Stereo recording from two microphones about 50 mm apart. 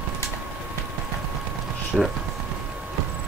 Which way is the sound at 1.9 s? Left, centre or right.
Centre.